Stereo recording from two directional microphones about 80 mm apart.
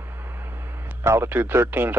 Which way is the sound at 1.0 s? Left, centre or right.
Right.